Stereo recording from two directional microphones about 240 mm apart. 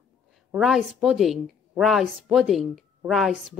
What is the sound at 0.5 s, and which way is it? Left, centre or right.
A woman's voice, centre.